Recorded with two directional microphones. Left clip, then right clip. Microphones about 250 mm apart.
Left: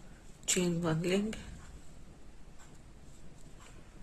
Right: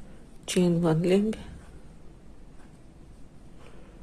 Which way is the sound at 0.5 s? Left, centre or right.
Right.